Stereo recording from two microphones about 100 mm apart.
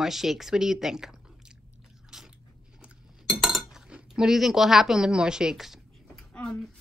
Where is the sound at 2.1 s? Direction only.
5° right (ahead or behind).